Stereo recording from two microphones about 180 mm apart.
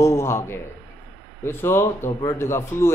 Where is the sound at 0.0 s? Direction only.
15° left (ahead or behind).